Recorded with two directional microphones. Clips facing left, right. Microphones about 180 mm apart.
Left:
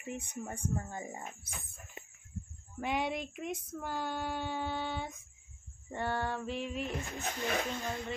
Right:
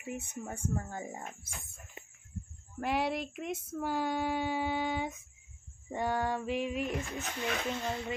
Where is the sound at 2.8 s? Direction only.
5° right (ahead or behind).